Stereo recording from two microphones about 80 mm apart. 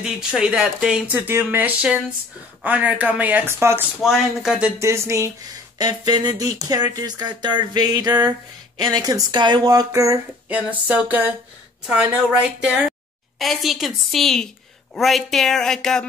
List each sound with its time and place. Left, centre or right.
0.0 s speech: centre
3.5 s speech: right
4.0 s speech: centre
4.7 s speech: right
5.8 s speech: right
10.5 s speech: centre
11.8 s speech: centre
13.4 s a woman's voice: centre